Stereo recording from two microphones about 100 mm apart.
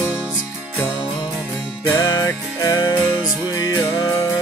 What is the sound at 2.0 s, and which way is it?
Music, 35° left (ahead or behind).